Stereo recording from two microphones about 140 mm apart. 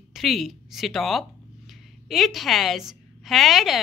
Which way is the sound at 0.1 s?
Centre (ahead or behind).